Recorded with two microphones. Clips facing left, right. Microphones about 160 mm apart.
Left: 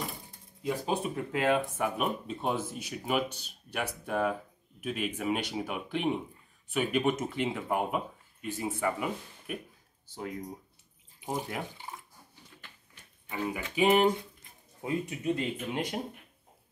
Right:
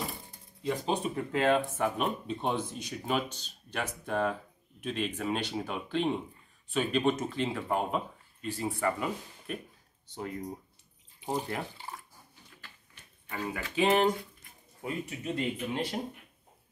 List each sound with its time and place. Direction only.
0.6 s speech: 5° left (ahead or behind)
11.1 s water: 10° left (ahead or behind)
13.3 s speech: 15° left (ahead or behind)